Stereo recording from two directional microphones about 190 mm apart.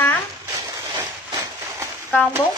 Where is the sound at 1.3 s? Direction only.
20° right (ahead or behind).